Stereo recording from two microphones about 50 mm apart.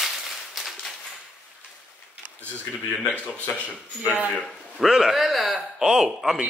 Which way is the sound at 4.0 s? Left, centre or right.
Right.